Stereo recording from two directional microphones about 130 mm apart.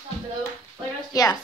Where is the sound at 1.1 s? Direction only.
30° left (ahead or behind).